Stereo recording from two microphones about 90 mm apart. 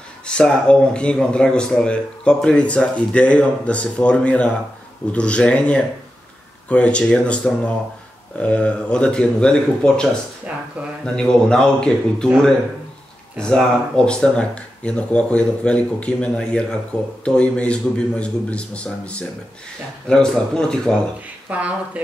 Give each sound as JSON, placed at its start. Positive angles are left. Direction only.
{"t": 0.3, "sound": "speech", "side_deg": 10}
{"t": 11.1, "sound": "speech", "side_deg": 10}
{"t": 13.4, "sound": "speech", "side_deg": 10}
{"t": 21.5, "sound": "speech", "side_deg": -15}